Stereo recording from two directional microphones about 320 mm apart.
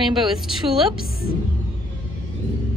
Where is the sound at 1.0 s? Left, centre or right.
Left.